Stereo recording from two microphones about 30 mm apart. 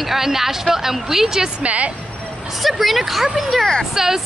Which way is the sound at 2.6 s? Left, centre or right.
Centre.